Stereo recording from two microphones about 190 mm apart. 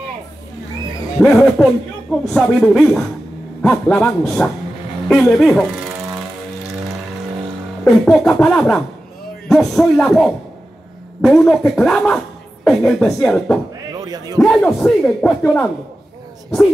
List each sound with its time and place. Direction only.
1.2 s a woman's voice: 5° left (ahead or behind)
7.8 s a woman's voice: centre (ahead or behind)
13.9 s a sound: 20° right (ahead or behind)
14.4 s a woman's voice: 10° left (ahead or behind)